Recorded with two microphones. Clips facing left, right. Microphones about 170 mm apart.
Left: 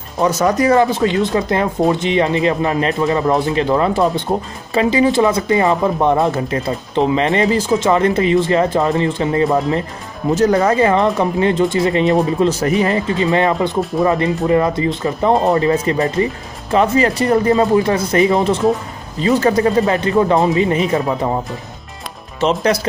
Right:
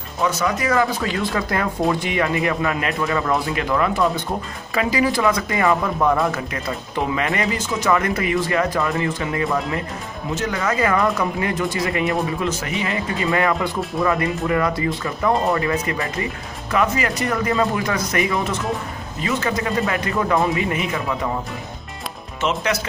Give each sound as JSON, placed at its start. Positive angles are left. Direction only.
{"t": 0.2, "sound": "speech", "side_deg": 40}
{"t": 3.3, "sound": "speech", "side_deg": 25}
{"t": 13.2, "sound": "speech", "side_deg": 25}
{"t": 22.4, "sound": "speech", "side_deg": 35}